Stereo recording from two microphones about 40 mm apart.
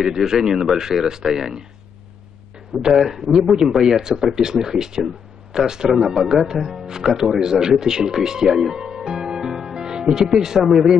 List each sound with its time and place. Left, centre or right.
0.0 s speech: centre
2.8 s speech: centre